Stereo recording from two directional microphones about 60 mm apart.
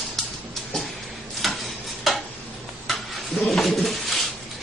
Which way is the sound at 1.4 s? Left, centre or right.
Centre.